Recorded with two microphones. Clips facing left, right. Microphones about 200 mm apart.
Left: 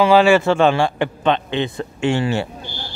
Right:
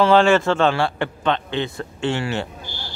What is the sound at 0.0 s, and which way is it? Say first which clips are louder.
A man's voice: left 2 dB; 10° left (ahead or behind).